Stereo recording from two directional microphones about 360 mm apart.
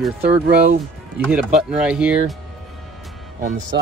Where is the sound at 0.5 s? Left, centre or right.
Right.